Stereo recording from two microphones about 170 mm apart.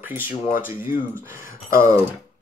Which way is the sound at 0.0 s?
10° right (ahead or behind).